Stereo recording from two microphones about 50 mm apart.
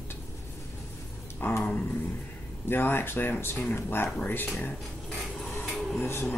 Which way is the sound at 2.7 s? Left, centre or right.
Left.